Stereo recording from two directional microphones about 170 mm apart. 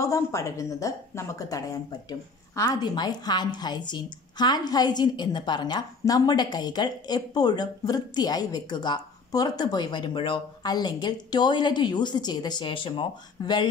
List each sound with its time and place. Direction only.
0.0 s a woman's voice: 20° left (ahead or behind)